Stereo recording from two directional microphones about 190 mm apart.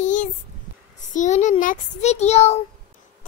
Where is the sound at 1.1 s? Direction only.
40° left (ahead or behind).